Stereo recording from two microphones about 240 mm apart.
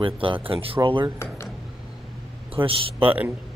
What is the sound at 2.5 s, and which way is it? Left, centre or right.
Speech, right.